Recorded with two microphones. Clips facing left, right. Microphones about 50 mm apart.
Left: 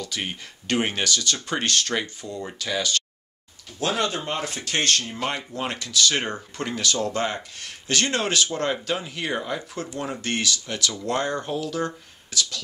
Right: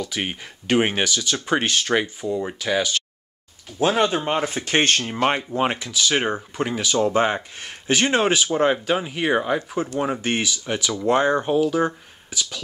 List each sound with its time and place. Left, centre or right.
0.0 s speech: centre; by 5.4 s right
5.6 s speech: centre